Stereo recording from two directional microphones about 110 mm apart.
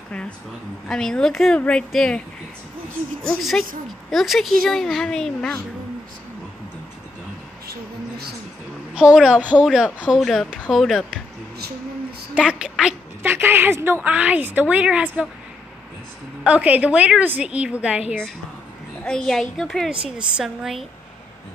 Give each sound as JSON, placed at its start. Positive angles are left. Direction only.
{"t": 0.8, "sound": "a woman's voice", "side_deg": 5}
{"t": 3.3, "sound": "a woman's voice", "side_deg": 0}
{"t": 8.9, "sound": "a woman's voice", "side_deg": -10}
{"t": 10.0, "sound": "a woman's voice", "side_deg": 0}
{"t": 12.4, "sound": "a woman's voice", "side_deg": -10}
{"t": 13.2, "sound": "a woman's voice", "side_deg": -20}
{"t": 16.4, "sound": "a woman's voice", "side_deg": -10}
{"t": 19.0, "sound": "a woman's voice", "side_deg": 5}